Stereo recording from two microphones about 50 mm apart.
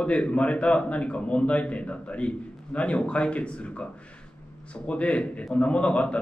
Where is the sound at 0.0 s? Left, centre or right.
Left.